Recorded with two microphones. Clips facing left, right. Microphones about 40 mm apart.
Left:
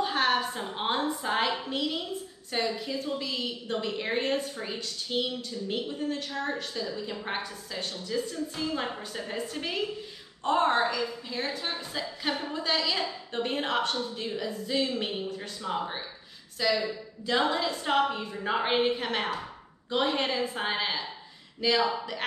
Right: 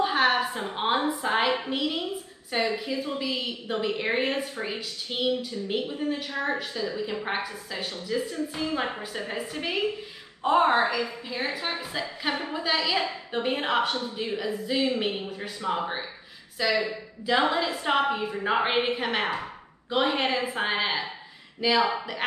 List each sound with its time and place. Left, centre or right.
0.0 s a woman's voice: centre
9.3 s a woman's voice: centre